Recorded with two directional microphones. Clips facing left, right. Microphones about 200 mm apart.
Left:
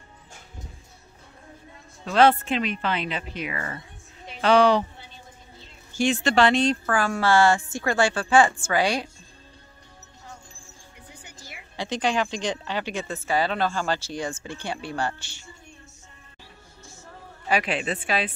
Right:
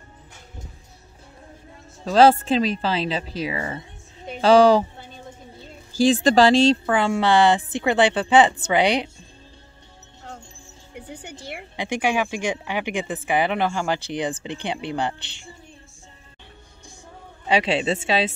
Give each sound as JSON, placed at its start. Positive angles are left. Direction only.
{"t": 2.0, "sound": "a woman's voice", "side_deg": -30}
{"t": 11.1, "sound": "a sound", "side_deg": -70}
{"t": 11.7, "sound": "speech", "side_deg": -15}
{"t": 17.5, "sound": "speech", "side_deg": -25}